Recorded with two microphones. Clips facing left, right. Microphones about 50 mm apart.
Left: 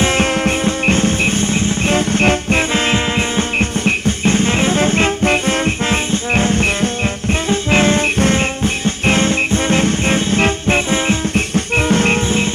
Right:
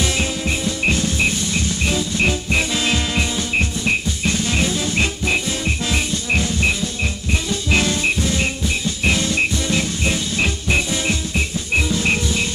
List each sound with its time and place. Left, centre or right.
0.0 s music: left
11.5 s music: left